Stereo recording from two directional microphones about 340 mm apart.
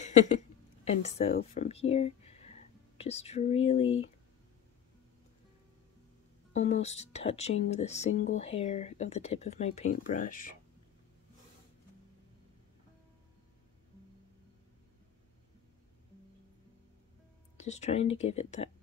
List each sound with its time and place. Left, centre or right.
0.0 s a woman's voice: left
6.5 s speech: centre
17.6 s speech: centre